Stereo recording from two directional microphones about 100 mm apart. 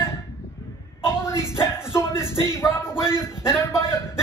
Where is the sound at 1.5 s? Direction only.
25° left (ahead or behind).